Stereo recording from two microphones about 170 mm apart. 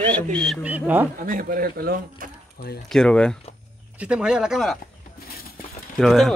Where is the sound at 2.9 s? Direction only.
5° left (ahead or behind).